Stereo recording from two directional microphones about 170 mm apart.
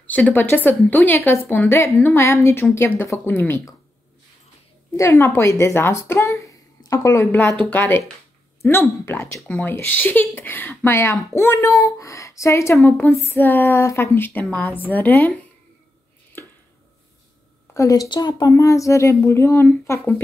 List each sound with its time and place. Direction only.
0.0 s speech: 10° left (ahead or behind)
4.9 s speech: 15° left (ahead or behind)
17.7 s speech: 20° left (ahead or behind)